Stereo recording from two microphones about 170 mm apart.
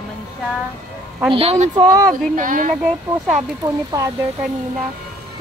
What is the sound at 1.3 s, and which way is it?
Speech, 35° right (ahead or behind).